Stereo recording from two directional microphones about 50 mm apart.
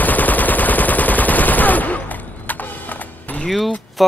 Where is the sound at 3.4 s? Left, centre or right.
Centre.